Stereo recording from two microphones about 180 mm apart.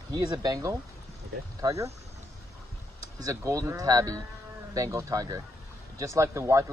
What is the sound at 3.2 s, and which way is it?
Speech, 20° right (ahead or behind).